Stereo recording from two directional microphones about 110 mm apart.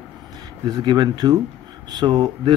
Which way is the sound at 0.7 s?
40° right (ahead or behind).